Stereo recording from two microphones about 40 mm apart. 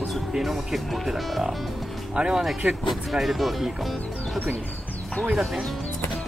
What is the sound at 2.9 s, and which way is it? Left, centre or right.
Speech, centre.